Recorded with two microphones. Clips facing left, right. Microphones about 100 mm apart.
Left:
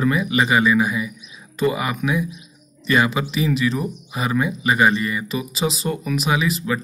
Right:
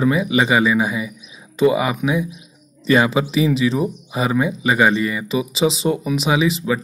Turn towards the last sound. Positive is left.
turn(degrees=-25)  # may be behind; listen again after turning